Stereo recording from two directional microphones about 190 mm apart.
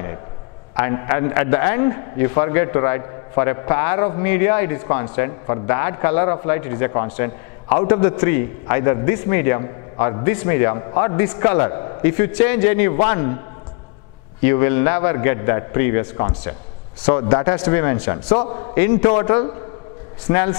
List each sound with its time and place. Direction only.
0.7 s a man's voice: 15° left (ahead or behind)
12.0 s a man's voice: 15° left (ahead or behind)
14.4 s a man's voice: 15° left (ahead or behind)
18.3 s a man's voice: 30° left (ahead or behind)
18.8 s a man's voice: 15° left (ahead or behind)